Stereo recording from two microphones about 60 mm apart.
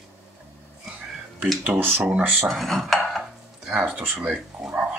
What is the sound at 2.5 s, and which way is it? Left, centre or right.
Cutlery, centre.